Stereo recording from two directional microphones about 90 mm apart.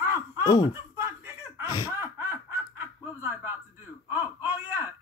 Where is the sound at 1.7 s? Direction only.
45° left (ahead or behind).